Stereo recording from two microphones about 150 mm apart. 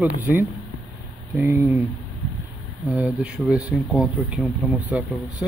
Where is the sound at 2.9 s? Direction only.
5° right (ahead or behind).